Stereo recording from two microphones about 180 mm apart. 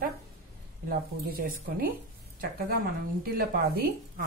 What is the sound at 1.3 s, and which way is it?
Speech, 55° right (ahead or behind).